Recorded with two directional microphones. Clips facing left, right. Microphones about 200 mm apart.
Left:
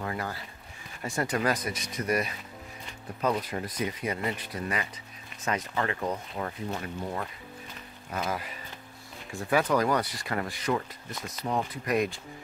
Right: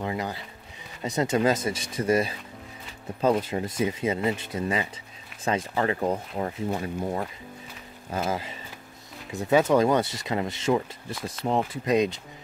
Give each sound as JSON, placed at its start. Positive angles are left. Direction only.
{"t": 0.0, "sound": "speech", "side_deg": -20}